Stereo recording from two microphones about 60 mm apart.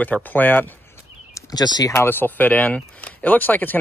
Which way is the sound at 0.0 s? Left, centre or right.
Left.